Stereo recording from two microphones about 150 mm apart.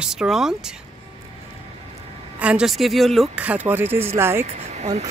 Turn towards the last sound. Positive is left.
turn(degrees=-50)  # may be behind; listen again after turning